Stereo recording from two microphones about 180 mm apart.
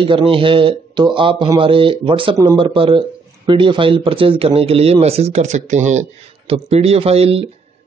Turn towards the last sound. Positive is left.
turn(degrees=-35)  # may be behind; listen again after turning